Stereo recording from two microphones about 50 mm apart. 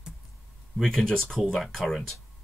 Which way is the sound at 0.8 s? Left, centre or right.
Centre.